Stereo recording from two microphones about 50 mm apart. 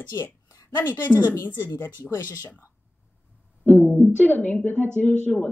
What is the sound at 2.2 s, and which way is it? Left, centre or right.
Speech, right.